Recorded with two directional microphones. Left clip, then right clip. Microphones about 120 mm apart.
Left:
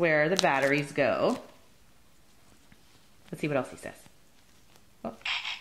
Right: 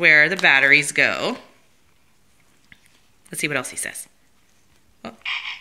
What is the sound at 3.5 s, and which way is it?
Speech, 10° right (ahead or behind).